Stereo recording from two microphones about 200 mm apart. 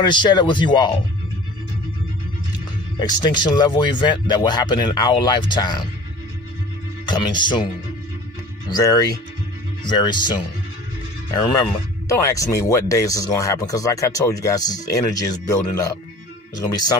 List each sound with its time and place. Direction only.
0.0 s speech: 20° left (ahead or behind)
3.0 s speech: 20° left (ahead or behind)
7.1 s speech: 20° left (ahead or behind)